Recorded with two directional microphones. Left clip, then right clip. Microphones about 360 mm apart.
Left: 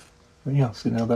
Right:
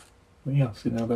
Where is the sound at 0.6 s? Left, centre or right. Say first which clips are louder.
Left 3 dB; centre.